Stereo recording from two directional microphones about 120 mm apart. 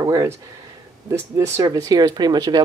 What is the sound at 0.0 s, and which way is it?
Speech, 30° right (ahead or behind).